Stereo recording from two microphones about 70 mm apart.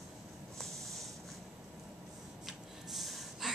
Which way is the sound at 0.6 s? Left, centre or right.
Centre.